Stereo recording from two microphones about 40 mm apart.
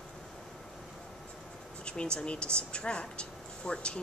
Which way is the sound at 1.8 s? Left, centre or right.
Left.